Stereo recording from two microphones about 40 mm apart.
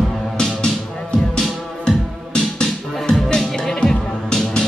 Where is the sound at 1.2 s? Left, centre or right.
Centre.